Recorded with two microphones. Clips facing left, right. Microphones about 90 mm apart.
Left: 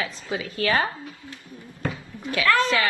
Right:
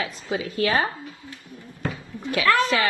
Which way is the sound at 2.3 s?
25° right (ahead or behind).